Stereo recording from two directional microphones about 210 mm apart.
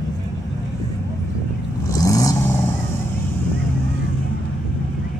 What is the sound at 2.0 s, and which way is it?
Vehicle, 15° left (ahead or behind).